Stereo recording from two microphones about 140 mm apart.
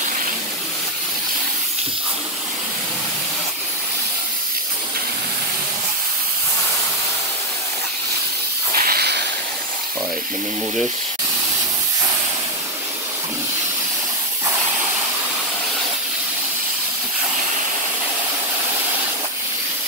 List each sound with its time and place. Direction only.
8.7 s hiss: 90° right